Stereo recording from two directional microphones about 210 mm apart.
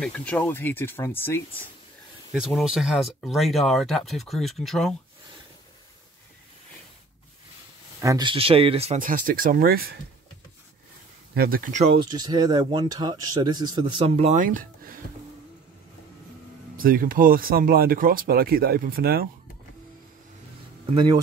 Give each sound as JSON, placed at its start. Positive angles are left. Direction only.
{"t": 0.0, "sound": "speech", "side_deg": 5}
{"t": 2.3, "sound": "speech", "side_deg": -5}
{"t": 8.0, "sound": "speech", "side_deg": -20}
{"t": 11.3, "sound": "speech", "side_deg": -45}
{"t": 12.1, "sound": "speech", "side_deg": -20}
{"t": 16.7, "sound": "speech", "side_deg": -40}
{"t": 20.9, "sound": "speech", "side_deg": -20}